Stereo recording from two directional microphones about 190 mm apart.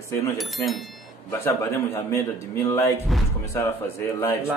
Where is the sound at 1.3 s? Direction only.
15° left (ahead or behind).